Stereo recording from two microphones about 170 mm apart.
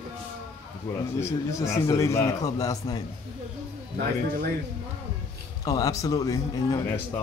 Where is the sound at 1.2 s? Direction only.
15° left (ahead or behind).